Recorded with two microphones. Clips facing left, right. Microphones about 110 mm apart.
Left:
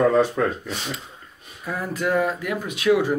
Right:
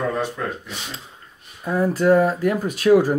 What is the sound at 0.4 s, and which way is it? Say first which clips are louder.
Speech: left 5 dB; 90° left.